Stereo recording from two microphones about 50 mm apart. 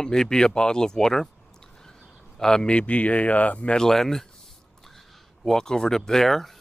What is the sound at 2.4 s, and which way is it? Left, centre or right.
A man's voice, centre.